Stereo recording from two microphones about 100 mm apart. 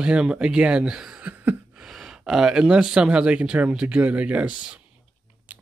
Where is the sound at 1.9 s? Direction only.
5° right (ahead or behind).